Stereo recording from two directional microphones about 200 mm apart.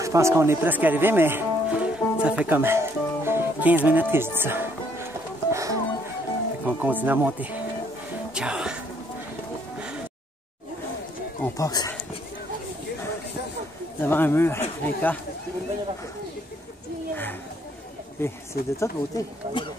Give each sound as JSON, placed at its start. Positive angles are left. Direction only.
{"t": 0.0, "sound": "speech", "side_deg": -15}
{"t": 5.5, "sound": "music", "side_deg": -15}
{"t": 6.6, "sound": "speech", "side_deg": -10}
{"t": 8.4, "sound": "music", "side_deg": -5}
{"t": 11.4, "sound": "speech", "side_deg": 15}
{"t": 14.0, "sound": "speech", "side_deg": 10}
{"t": 17.1, "sound": "a sound", "side_deg": 10}
{"t": 18.2, "sound": "speech", "side_deg": 10}